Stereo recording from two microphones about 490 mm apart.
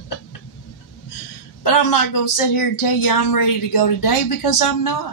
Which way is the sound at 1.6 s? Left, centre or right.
Left.